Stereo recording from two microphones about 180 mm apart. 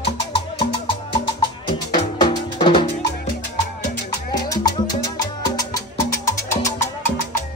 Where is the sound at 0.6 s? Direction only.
30° left (ahead or behind).